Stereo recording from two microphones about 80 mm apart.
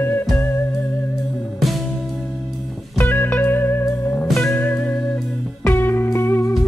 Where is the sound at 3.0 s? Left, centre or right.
Left.